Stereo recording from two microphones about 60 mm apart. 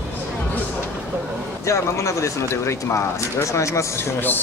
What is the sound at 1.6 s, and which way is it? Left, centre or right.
Speech, left.